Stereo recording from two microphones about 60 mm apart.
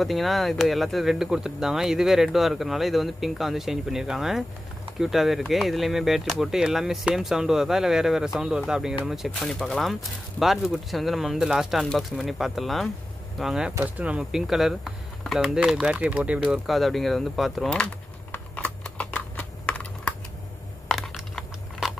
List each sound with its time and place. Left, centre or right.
0.0 s speech: centre
9.3 s speech: centre
13.8 s speech: right
14.3 s speech: centre
16.5 s speech: centre
17.6 s speech: centre
18.6 s typing: left
21.8 s crunch: centre